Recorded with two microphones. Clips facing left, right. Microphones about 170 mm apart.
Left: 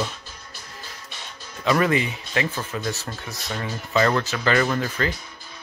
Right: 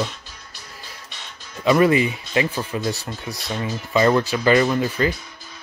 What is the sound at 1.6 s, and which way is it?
Speech, 15° right (ahead or behind).